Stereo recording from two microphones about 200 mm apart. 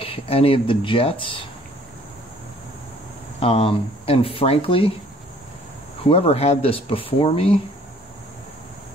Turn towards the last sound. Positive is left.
turn(degrees=30)  # may be behind; listen again after turning